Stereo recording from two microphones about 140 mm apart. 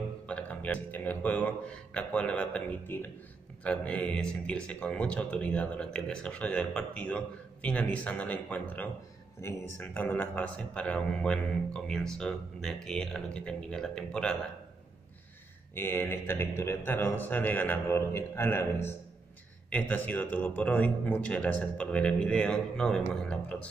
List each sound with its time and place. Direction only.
0.3 s a man's voice: 10° left (ahead or behind)
15.7 s a man's voice: 15° left (ahead or behind)